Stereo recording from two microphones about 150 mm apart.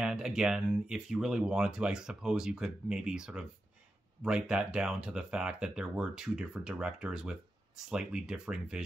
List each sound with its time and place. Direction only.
0.0 s speech: 5° right (ahead or behind)